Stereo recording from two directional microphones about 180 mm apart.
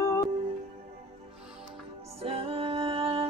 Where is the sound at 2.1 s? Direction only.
35° right (ahead or behind).